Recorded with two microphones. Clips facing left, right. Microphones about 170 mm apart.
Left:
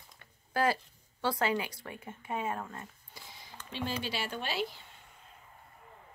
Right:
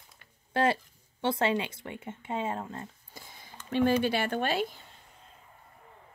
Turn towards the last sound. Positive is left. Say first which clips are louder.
# right 6 dB
turn(degrees=-50)  # may be behind; listen again after turning